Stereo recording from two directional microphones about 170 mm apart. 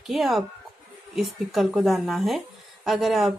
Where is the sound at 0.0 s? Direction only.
Centre (ahead or behind).